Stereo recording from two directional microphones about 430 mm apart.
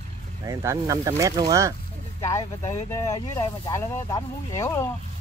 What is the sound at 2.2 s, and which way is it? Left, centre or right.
Speech, centre.